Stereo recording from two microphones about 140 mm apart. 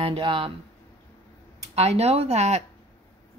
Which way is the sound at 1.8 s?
50° right (ahead or behind).